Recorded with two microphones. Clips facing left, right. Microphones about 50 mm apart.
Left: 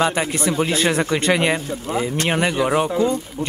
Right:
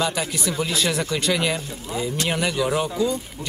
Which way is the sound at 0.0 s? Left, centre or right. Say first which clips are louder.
Left 5 dB; left.